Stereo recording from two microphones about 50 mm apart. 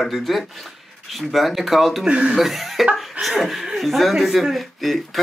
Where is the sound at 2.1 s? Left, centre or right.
Right.